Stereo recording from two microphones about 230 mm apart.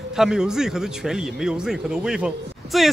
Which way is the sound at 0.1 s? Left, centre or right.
Centre.